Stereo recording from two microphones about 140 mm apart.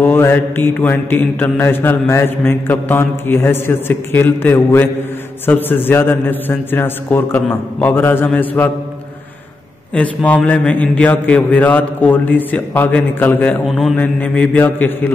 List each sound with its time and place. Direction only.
0.0 s mantra: 15° left (ahead or behind)
9.9 s mantra: 10° left (ahead or behind)
13.7 s mantra: centre (ahead or behind)
13.9 s mantra: 10° left (ahead or behind)